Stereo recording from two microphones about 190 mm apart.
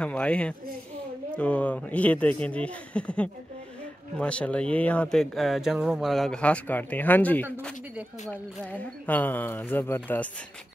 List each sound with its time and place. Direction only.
0.0 s speech: 5° left (ahead or behind)